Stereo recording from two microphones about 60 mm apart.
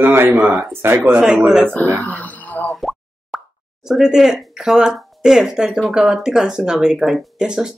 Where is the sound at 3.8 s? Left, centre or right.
Centre.